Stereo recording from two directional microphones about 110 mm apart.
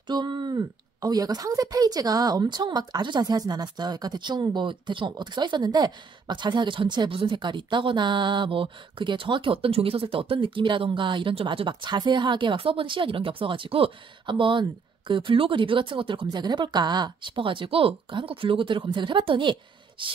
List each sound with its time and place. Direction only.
0.0 s a woman's voice: 40° right (ahead or behind)